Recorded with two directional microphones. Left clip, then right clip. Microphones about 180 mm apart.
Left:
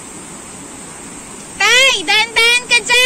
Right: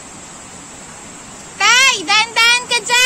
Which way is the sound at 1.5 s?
5° right (ahead or behind).